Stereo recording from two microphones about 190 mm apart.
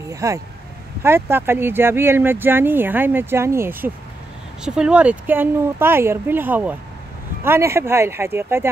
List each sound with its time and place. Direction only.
0.1 s speech: 15° right (ahead or behind)